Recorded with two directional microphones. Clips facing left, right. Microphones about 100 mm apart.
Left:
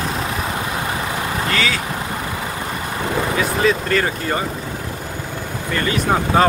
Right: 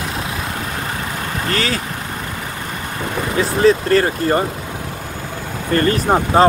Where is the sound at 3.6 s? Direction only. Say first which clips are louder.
Right 7 dB; 35° right (ahead or behind).